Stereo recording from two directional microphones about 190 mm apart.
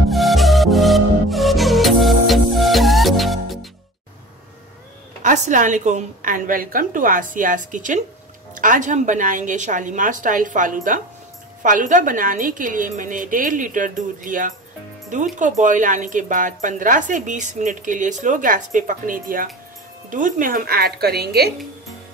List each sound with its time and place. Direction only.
0.1 s music: centre (ahead or behind)
5.2 s speech: 40° right (ahead or behind); by 21.5 s 55° right (ahead or behind)